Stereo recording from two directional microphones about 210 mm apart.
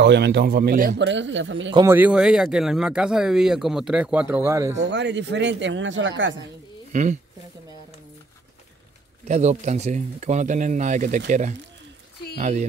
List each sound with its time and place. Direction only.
0.0 s speech: 55° right (ahead or behind)
1.0 s speech: 60° right (ahead or behind)
1.7 s a man's voice: 20° right (ahead or behind)
2.0 s speech: 5° right (ahead or behind)
4.8 s speech: 55° right (ahead or behind)
6.9 s speech: 35° right (ahead or behind)
9.3 s speech: 35° right (ahead or behind)